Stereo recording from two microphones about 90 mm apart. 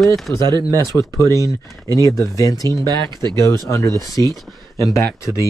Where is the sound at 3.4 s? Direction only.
35° left (ahead or behind).